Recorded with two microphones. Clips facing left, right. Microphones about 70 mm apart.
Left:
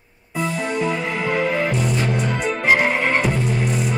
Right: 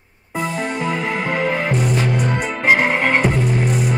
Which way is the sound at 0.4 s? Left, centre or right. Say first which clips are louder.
Even; right.